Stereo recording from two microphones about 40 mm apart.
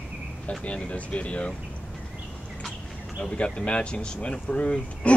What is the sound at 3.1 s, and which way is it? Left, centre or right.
Speech, left.